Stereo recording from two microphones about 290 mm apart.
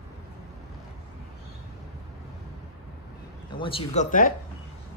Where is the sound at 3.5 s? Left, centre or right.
Centre.